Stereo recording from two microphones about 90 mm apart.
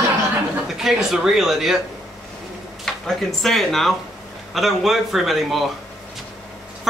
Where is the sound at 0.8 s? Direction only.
5° right (ahead or behind).